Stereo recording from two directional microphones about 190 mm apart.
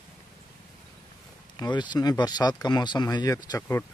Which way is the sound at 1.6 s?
25° left (ahead or behind).